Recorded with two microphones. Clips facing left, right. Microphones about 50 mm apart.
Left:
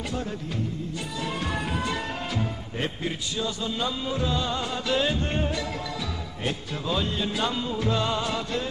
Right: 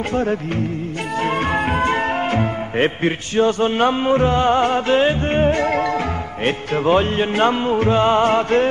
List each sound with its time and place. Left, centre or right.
0.1 s music of bollywood: right
1.2 s speech: right